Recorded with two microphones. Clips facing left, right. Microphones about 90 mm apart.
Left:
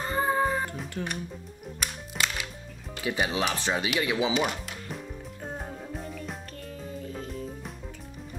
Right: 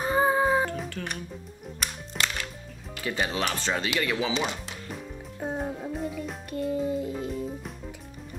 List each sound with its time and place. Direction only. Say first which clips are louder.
0.0 s music: right 3 dB; 10° right (ahead or behind)
1.0 s speech: left 2 dB; 15° left (ahead or behind)
1.8 s music: even; 5° left (ahead or behind)
3.0 s speech: left 1 dB; 15° left (ahead or behind)
5.4 s music: right 8 dB; 10° right (ahead or behind)
7.2 s music: right 4 dB; centre (ahead or behind)